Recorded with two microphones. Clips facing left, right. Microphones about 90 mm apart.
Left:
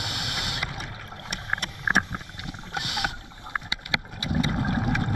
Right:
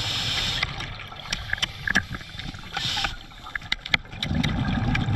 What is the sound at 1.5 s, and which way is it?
Boat, 20° left (ahead or behind).